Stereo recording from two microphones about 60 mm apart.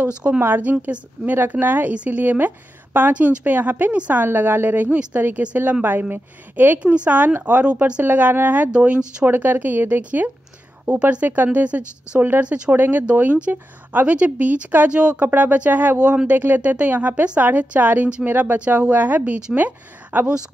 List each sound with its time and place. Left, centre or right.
0.2 s a woman's voice: right
8.7 s a woman's voice: centre
9.2 s a woman's voice: right
12.7 s a woman's voice: right; by 15.1 s centre
15.1 s a woman's voice: right